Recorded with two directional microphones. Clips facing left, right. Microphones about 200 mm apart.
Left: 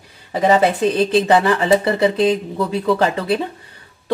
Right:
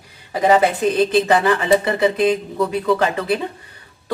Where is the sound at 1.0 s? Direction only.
30° left (ahead or behind).